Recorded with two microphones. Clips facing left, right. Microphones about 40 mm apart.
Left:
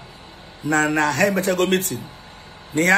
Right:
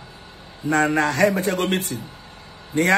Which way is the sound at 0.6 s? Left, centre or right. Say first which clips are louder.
Even; left.